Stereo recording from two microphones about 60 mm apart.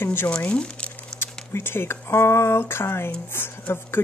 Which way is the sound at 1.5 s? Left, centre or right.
Left.